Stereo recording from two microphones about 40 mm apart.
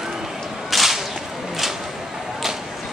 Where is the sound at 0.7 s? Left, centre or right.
Centre.